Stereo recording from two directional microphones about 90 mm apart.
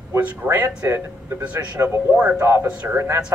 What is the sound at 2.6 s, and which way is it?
Speech, 15° right (ahead or behind).